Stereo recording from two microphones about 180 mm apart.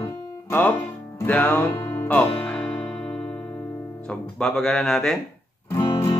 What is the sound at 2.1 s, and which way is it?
Speech, 5° left (ahead or behind).